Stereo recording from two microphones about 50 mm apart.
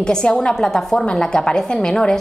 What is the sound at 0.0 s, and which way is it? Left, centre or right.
A woman's voice, centre.